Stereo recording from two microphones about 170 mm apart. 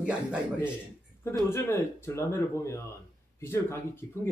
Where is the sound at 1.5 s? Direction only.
15° left (ahead or behind).